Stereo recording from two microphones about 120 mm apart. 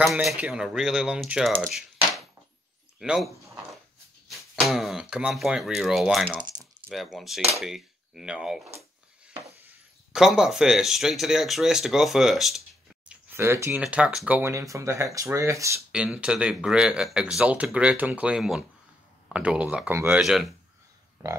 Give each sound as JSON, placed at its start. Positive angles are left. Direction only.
{"t": 0.0, "sound": "speech", "side_deg": 0}
{"t": 1.7, "sound": "coin", "side_deg": 0}
{"t": 3.0, "sound": "speech", "side_deg": -5}
{"t": 4.3, "sound": "speech", "side_deg": 0}
{"t": 9.2, "sound": "a sound", "side_deg": -15}
{"t": 10.1, "sound": "speech", "side_deg": -5}
{"t": 13.1, "sound": "a sound", "side_deg": -20}
{"t": 13.7, "sound": "speech", "side_deg": -10}
{"t": 14.5, "sound": "speech", "side_deg": -25}
{"t": 15.9, "sound": "speech", "side_deg": -10}